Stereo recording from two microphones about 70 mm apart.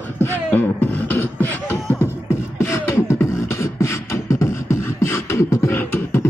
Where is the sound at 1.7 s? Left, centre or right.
Left.